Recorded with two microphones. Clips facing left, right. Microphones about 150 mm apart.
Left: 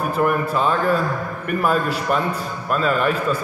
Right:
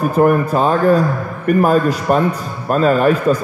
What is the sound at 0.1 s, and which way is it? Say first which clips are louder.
A man's voice: right 6 dB; 45° right (ahead or behind).